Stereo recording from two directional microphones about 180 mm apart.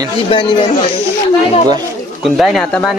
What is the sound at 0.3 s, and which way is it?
Speech, 30° left (ahead or behind).